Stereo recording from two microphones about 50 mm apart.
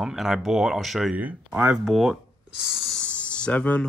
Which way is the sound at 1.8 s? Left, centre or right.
Centre.